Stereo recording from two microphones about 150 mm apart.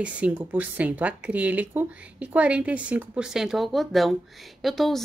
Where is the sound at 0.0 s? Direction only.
10° right (ahead or behind).